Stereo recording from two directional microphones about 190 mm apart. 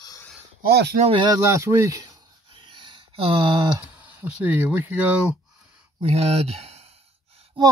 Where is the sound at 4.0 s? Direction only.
10° right (ahead or behind).